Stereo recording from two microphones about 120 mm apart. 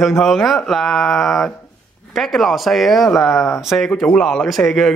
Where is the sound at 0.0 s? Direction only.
Centre (ahead or behind).